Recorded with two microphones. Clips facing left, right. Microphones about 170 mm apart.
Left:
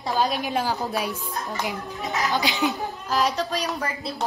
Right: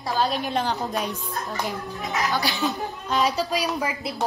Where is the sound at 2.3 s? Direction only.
20° left (ahead or behind).